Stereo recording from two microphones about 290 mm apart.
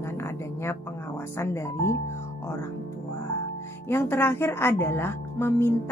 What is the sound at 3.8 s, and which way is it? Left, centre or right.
Speech, centre.